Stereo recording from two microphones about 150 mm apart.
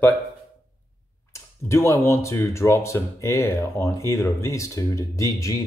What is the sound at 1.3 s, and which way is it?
Speech, 20° left (ahead or behind).